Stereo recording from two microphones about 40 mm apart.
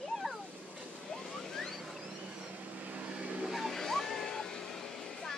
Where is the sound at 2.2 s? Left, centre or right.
Right.